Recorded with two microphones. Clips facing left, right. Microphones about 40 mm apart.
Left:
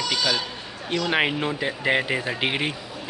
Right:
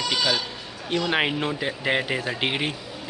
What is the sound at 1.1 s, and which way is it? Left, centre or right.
Speech, centre.